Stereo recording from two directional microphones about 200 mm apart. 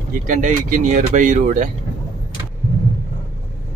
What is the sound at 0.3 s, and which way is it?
Speech, 40° right (ahead or behind).